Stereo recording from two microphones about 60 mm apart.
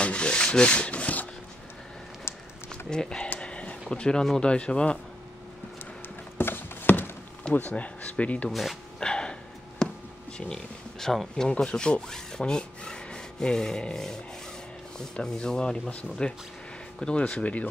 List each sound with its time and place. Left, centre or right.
0.0 s rub: centre
2.9 s speech: centre
3.3 s a sound: centre
3.9 s speech: centre
6.3 s a sound: left
7.7 s speech: left
8.5 s speech: centre
9.0 s a sound: centre
10.3 s speech: centre
15.1 s speech: centre